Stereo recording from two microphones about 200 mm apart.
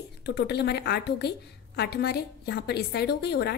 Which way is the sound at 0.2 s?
55° left (ahead or behind).